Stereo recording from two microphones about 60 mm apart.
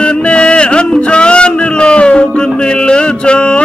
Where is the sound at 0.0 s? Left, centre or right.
Centre.